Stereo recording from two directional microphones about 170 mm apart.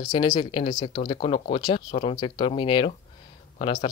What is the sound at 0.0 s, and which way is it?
Speech, 25° left (ahead or behind).